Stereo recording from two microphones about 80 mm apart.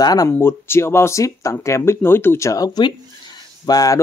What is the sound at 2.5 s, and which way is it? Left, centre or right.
Speech, left.